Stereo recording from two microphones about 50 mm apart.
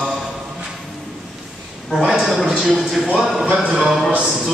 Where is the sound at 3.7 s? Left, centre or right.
Centre.